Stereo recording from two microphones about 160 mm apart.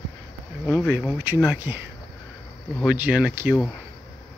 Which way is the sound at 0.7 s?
10° right (ahead or behind).